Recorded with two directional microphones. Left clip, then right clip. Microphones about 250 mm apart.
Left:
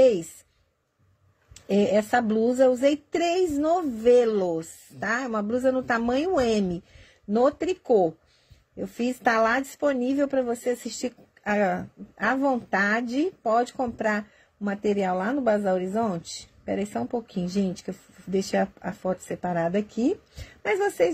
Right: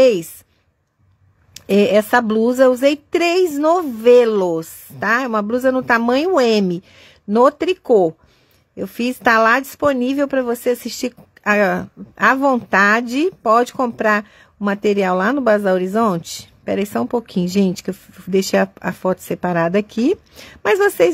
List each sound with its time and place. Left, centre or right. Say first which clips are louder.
1.5 s speech: right 9 dB; centre